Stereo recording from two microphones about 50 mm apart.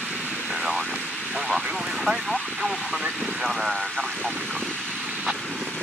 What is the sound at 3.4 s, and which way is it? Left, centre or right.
Vehicle, centre.